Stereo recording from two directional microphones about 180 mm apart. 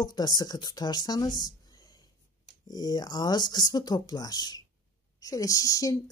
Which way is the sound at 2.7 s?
20° left (ahead or behind).